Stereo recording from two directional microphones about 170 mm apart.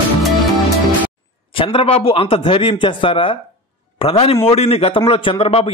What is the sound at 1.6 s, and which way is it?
A man's voice, 30° left (ahead or behind).